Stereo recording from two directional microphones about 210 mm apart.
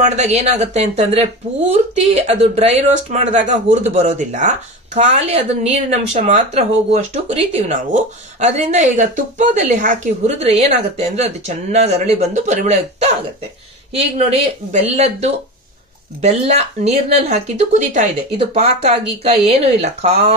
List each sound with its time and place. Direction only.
0.0 s speech: 35° right (ahead or behind)